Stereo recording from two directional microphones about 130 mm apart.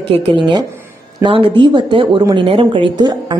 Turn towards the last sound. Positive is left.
turn(degrees=-30)  # may be behind; listen again after turning